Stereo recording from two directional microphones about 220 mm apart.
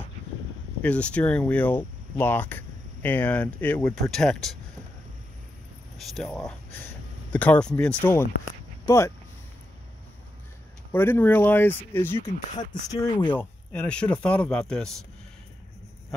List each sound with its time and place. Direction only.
0.8 s speech: 5° left (ahead or behind)
5.9 s speech: centre (ahead or behind)
10.9 s speech: 10° left (ahead or behind)
12.2 s speech: 25° left (ahead or behind)
13.3 s speech: 5° left (ahead or behind)